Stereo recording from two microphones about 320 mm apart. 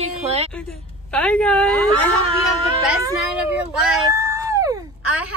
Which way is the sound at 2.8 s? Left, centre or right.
Centre.